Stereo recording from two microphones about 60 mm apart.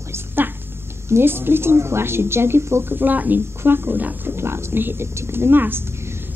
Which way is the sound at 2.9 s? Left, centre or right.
Right.